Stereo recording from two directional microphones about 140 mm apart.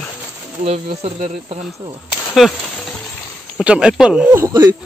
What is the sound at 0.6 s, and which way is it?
Speech, 45° right (ahead or behind).